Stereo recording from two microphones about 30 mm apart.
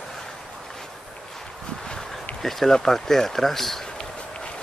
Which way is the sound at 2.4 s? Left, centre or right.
Centre.